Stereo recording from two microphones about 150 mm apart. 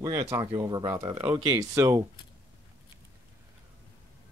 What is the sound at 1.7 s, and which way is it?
Speech, 20° right (ahead or behind).